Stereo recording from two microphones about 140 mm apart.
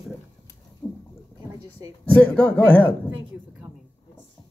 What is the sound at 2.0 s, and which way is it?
Speech, 10° left (ahead or behind).